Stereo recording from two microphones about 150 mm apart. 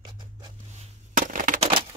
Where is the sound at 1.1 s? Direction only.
60° right (ahead or behind).